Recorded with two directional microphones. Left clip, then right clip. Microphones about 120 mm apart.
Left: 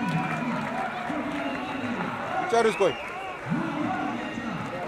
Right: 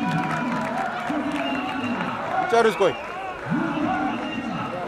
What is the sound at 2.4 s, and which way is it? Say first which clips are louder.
Speech: right 3 dB; 15° right (ahead or behind).